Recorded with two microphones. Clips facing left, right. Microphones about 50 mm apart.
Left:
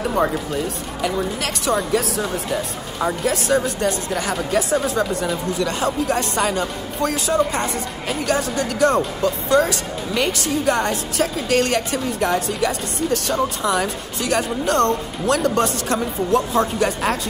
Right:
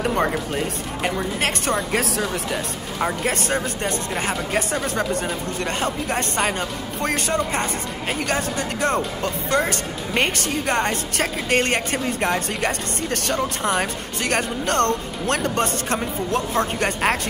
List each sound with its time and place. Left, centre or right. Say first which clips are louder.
0.5 s speech: left 1 dB; right
3.3 s speech: left 4 dB; right
3.8 s speech: left 3 dB; right